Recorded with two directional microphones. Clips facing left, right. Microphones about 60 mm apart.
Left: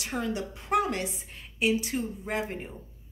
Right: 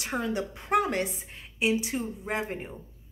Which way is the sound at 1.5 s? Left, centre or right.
Centre.